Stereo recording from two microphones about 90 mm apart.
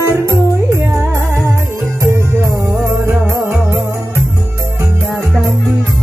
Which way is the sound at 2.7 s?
25° right (ahead or behind).